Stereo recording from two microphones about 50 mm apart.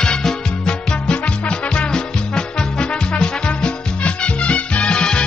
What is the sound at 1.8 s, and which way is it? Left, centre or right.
Music, centre.